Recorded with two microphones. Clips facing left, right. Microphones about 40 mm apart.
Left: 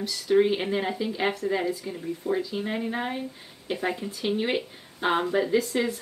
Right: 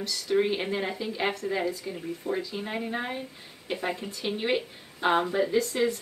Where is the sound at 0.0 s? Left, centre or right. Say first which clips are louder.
Left 4 dB; centre.